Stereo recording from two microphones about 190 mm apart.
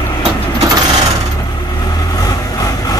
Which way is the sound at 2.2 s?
20° left (ahead or behind).